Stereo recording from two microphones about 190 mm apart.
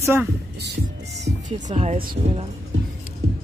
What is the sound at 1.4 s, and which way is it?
Speech, 35° right (ahead or behind).